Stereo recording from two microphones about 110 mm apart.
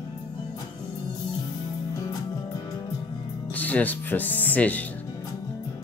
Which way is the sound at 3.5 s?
15° left (ahead or behind).